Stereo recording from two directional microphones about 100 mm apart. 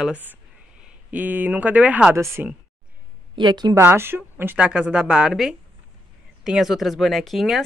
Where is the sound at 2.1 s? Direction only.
30° right (ahead or behind).